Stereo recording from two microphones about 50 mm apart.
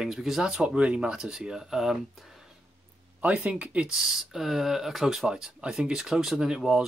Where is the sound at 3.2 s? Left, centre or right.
Right.